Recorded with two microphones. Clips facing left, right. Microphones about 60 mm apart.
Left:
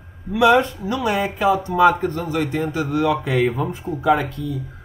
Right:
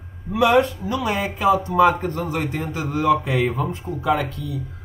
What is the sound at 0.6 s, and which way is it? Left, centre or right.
Speech, left.